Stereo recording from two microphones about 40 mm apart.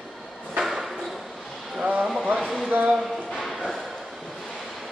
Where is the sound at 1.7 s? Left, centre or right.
Right.